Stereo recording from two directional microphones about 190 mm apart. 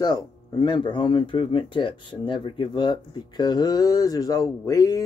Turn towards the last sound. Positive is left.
turn(degrees=20)  # may be behind; listen again after turning